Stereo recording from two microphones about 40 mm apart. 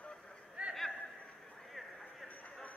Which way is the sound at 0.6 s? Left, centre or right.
Right.